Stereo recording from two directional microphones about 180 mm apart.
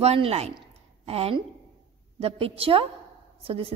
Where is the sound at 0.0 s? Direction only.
35° right (ahead or behind).